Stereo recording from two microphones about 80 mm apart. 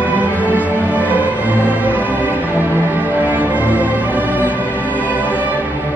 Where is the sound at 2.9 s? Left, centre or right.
Right.